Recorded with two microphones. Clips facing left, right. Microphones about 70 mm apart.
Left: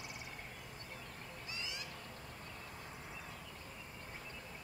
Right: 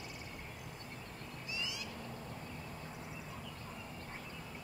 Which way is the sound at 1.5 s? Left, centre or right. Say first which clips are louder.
Right 4 dB; left.